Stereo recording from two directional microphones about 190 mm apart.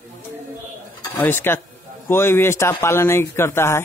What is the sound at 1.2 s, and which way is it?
Speech, 10° left (ahead or behind).